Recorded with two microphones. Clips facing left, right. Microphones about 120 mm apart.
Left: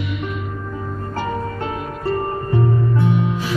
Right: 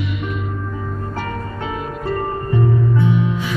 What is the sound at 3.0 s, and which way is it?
Music, 35° left (ahead or behind).